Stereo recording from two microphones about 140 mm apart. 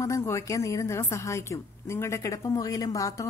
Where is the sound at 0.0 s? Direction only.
20° left (ahead or behind).